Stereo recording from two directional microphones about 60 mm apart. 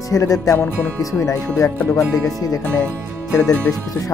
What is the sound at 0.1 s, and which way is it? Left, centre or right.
Speech, left.